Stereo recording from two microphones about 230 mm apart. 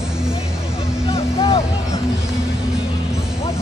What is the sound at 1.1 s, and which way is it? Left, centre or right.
Music, left.